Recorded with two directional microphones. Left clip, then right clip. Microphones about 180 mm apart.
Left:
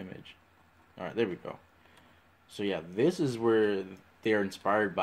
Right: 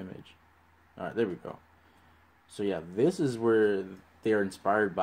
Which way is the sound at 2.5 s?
20° right (ahead or behind).